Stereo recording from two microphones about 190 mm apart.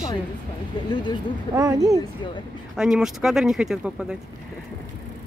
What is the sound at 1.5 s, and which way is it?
Speech, 15° right (ahead or behind).